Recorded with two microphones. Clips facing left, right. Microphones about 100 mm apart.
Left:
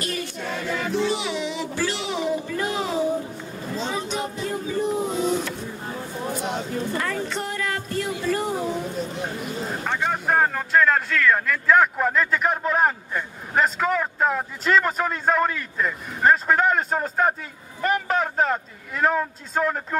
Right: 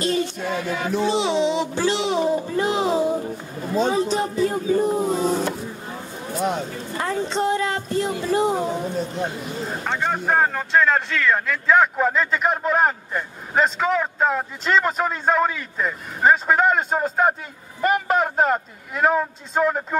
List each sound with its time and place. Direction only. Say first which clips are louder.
0.0 s music: right 7 dB; 25° right (ahead or behind)
0.7 s a man's voice: right 2 dB; 10° right (ahead or behind)
1.0 s a sound: right 6 dB; 25° right (ahead or behind)
3.7 s speech: right 8 dB; 50° right (ahead or behind)
4.1 s speech: right 6 dB; 40° right (ahead or behind)
7.0 s speech: right 4 dB; 25° right (ahead or behind)
9.8 s a man's voice: right 1 dB; centre (ahead or behind)